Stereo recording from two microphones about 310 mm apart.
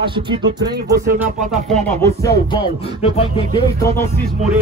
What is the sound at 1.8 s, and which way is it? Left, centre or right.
Music, centre.